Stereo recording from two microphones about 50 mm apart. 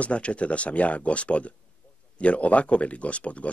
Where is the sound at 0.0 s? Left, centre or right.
Left.